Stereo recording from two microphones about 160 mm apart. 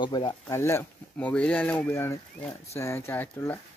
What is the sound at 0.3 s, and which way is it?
Speech, 15° left (ahead or behind).